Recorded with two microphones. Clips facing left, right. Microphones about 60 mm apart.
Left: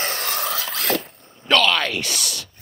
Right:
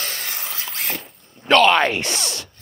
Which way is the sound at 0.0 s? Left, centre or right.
Left.